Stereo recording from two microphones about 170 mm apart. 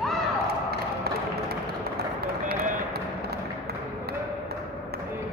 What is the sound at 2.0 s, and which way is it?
Run, 65° right (ahead or behind).